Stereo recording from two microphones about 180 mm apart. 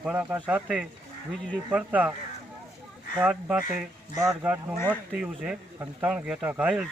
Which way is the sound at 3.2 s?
5° right (ahead or behind).